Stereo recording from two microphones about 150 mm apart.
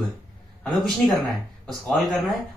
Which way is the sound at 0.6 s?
Centre (ahead or behind).